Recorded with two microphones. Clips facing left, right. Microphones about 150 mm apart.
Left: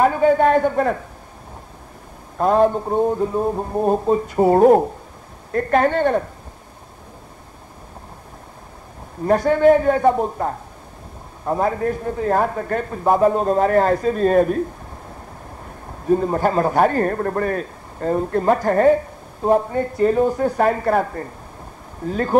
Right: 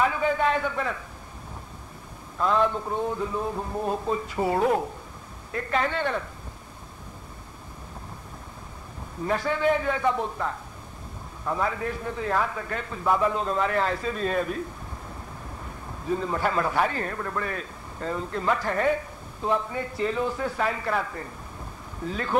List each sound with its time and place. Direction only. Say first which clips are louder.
0.0 s a sound: left 9 dB; 45° left (ahead or behind)
2.3 s a man's voice: left 8 dB; 45° left (ahead or behind)
9.2 s a man's voice: left 10 dB; 45° left (ahead or behind)
15.6 s a man's voice: left 7 dB; 45° left (ahead or behind)